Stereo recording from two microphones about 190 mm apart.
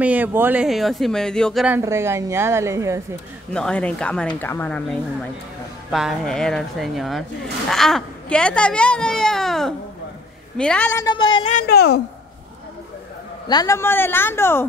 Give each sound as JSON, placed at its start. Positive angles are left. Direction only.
{"t": 0.0, "sound": "speech", "side_deg": -10}
{"t": 1.8, "sound": "a woman's voice", "side_deg": -15}
{"t": 3.5, "sound": "speech", "side_deg": 5}
{"t": 11.0, "sound": "speech", "side_deg": 20}
{"t": 11.4, "sound": "speech", "side_deg": 50}
{"t": 13.5, "sound": "speech", "side_deg": 20}